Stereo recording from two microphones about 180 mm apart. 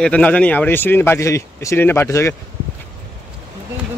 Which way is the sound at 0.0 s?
5° left (ahead or behind).